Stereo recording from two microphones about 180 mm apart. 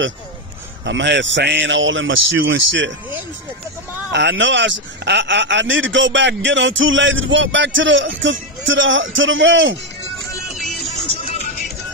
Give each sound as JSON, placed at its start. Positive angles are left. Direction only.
{"t": 0.8, "sound": "speech", "side_deg": -75}
{"t": 4.1, "sound": "speech", "side_deg": -80}
{"t": 10.6, "sound": "music", "side_deg": 0}